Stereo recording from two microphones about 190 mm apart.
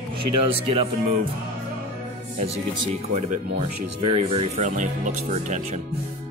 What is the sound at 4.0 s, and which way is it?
Speech, 30° right (ahead or behind).